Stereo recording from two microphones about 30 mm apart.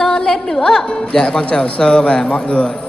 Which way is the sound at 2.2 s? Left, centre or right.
Left.